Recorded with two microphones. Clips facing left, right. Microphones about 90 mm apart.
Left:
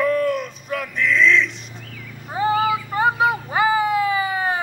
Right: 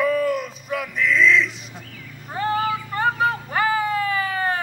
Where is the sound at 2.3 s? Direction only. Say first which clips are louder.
Left 3 dB; 10° left (ahead or behind).